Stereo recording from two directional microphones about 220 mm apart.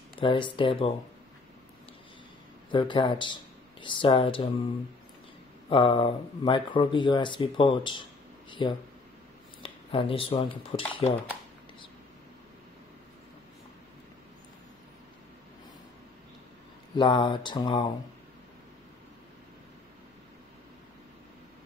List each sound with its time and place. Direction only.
0.1 s speech: 25° left (ahead or behind)
2.7 s speech: 20° left (ahead or behind)
5.7 s speech: 25° left (ahead or behind)
16.9 s speech: 20° left (ahead or behind)